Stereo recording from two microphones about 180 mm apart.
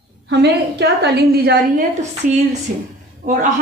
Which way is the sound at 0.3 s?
65° right (ahead or behind).